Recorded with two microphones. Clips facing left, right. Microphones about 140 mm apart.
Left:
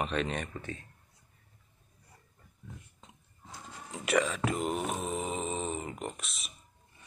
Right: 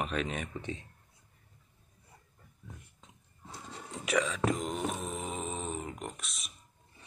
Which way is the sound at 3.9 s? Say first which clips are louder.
Left 2 dB; centre (ahead or behind).